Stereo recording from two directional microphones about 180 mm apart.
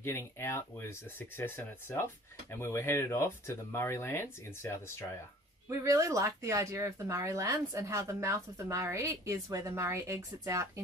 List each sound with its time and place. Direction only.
0.0 s speech: 15° left (ahead or behind)
5.7 s speech: 15° right (ahead or behind)